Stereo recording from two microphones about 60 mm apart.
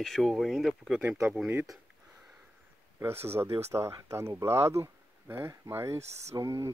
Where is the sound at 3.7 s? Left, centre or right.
Right.